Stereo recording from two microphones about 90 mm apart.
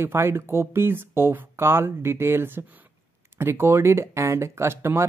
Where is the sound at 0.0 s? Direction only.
30° right (ahead or behind).